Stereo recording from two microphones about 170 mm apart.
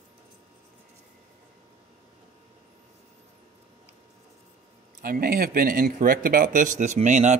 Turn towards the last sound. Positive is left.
turn(degrees=-45)  # may be behind; listen again after turning